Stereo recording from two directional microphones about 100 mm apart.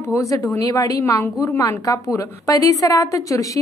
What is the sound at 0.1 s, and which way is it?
A woman's voice, 35° left (ahead or behind).